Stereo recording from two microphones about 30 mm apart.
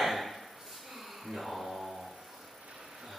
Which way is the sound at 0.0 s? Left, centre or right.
Centre.